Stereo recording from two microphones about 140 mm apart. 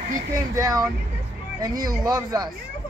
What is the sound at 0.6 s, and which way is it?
Speech, 25° right (ahead or behind).